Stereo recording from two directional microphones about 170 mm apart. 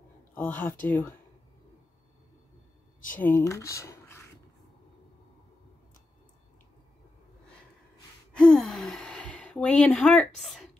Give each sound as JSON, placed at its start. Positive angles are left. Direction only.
{"t": 0.3, "sound": "a sound", "side_deg": 10}
{"t": 0.8, "sound": "speech", "side_deg": 10}
{"t": 3.2, "sound": "speech", "side_deg": 15}
{"t": 8.3, "sound": "speech", "side_deg": 5}